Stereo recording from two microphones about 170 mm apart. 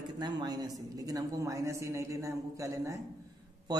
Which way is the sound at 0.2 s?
25° right (ahead or behind).